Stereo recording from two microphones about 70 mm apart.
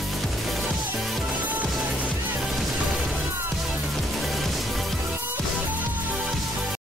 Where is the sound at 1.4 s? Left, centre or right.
Right.